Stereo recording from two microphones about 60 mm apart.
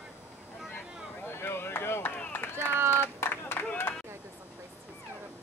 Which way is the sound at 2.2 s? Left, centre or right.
Left.